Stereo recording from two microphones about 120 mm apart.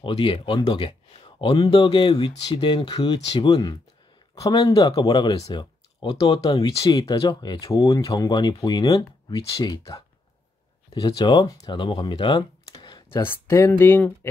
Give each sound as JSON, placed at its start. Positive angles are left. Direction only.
{"t": 0.0, "sound": "speech", "side_deg": 50}
{"t": 9.4, "sound": "speech", "side_deg": 50}
{"t": 9.7, "sound": "speech", "side_deg": 30}
{"t": 11.1, "sound": "speech", "side_deg": 35}
{"t": 11.7, "sound": "speech", "side_deg": 45}
{"t": 13.1, "sound": "speech", "side_deg": 20}